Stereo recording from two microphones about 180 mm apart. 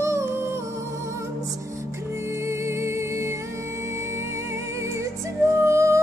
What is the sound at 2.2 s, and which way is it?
Music, 15° right (ahead or behind).